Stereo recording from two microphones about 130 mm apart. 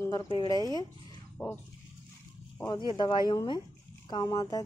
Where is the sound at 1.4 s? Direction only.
10° left (ahead or behind).